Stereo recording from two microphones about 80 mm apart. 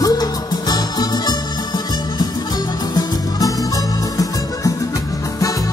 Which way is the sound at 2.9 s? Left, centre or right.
Left.